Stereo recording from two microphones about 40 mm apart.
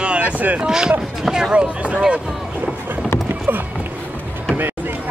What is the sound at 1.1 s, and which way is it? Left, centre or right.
Speech, centre.